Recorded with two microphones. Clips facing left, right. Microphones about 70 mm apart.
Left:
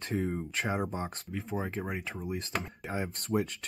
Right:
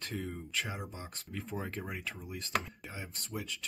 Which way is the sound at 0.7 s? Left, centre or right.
Left.